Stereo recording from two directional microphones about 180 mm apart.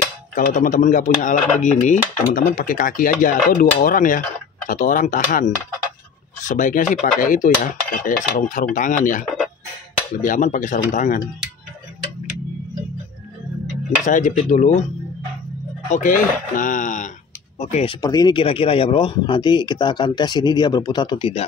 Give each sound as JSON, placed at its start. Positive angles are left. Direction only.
{"t": 0.3, "sound": "speech", "side_deg": 45}
{"t": 10.2, "sound": "speech", "side_deg": 45}
{"t": 14.0, "sound": "speech", "side_deg": 40}
{"t": 15.9, "sound": "speech", "side_deg": 45}
{"t": 18.0, "sound": "speech", "side_deg": 20}